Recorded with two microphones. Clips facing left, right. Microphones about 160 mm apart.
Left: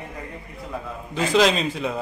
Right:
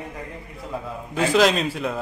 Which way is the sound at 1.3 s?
Centre (ahead or behind).